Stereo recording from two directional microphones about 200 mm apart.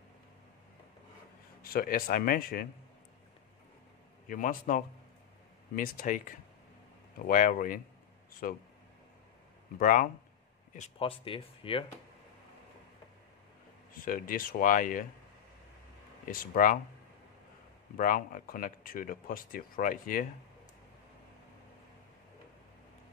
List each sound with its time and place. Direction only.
1.6 s speech: 45° left (ahead or behind)
4.3 s speech: 45° left (ahead or behind)
7.2 s speech: 40° left (ahead or behind)
9.8 s speech: 45° left (ahead or behind)
10.7 s speech: 30° left (ahead or behind)
13.9 s speech: 45° left (ahead or behind)
16.3 s speech: 45° left (ahead or behind)
17.9 s speech: 45° left (ahead or behind)